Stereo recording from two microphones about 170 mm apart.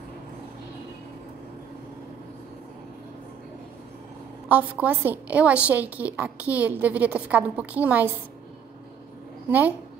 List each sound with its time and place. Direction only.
4.5 s a woman's voice: 10° right (ahead or behind)
9.5 s a woman's voice: 10° right (ahead or behind)